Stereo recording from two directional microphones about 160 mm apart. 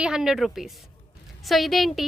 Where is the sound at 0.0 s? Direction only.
5° right (ahead or behind).